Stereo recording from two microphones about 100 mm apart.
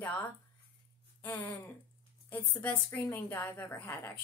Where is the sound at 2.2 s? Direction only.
15° left (ahead or behind).